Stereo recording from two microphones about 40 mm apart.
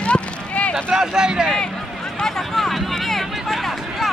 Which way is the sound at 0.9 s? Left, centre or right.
Centre.